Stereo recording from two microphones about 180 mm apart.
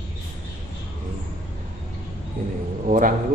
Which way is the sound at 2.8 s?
50° right (ahead or behind).